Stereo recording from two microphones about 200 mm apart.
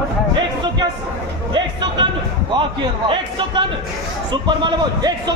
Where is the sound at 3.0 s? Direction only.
25° right (ahead or behind).